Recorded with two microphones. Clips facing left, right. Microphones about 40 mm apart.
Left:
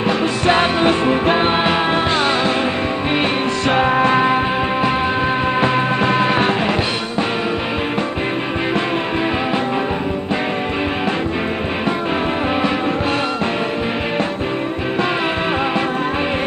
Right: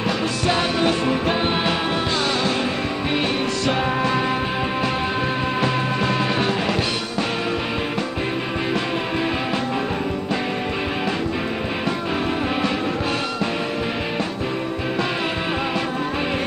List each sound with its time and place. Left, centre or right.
0.5 s music: left
3.2 s music: left